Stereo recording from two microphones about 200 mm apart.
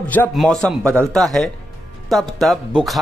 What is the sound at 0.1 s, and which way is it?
Speech, 5° left (ahead or behind).